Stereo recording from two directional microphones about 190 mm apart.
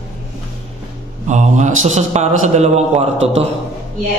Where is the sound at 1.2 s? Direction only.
40° right (ahead or behind).